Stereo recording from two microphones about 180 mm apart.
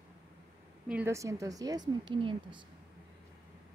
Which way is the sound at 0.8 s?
10° right (ahead or behind).